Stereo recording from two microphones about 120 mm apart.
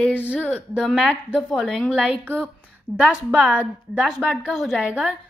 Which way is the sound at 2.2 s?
15° right (ahead or behind).